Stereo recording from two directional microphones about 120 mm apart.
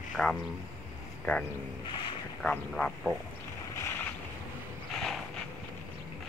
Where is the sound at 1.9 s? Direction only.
40° left (ahead or behind).